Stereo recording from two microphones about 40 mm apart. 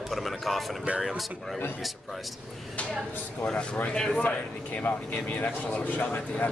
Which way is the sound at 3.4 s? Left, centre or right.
Left.